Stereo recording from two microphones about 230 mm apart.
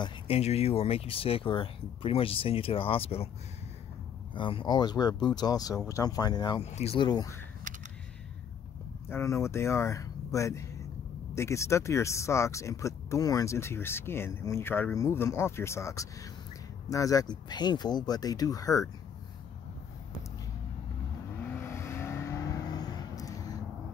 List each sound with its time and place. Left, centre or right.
0.0 s speech: left
4.3 s speech: left
9.1 s speech: centre
21.4 s vehicle: centre